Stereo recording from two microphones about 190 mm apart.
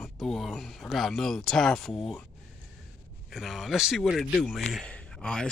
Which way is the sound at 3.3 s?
Centre (ahead or behind).